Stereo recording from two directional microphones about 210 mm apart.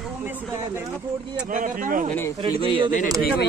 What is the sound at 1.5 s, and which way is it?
Speech, 40° right (ahead or behind).